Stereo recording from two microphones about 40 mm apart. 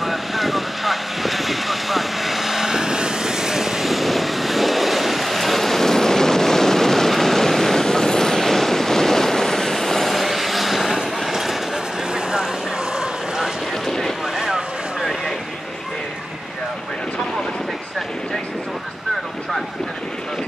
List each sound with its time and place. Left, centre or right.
0.0 s vehicle: centre
11.1 s train: centre
11.7 s vehicle: centre